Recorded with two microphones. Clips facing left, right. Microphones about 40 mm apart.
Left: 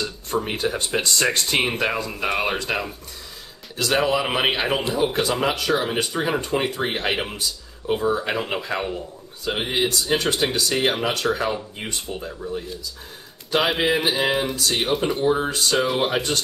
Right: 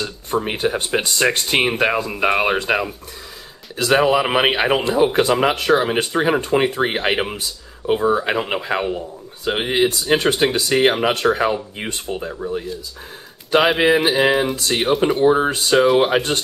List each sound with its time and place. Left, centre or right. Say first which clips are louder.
0.0 s speech: right 3 dB; centre
14.0 s speech: right 5 dB; centre
15.1 s speech: right 6 dB; right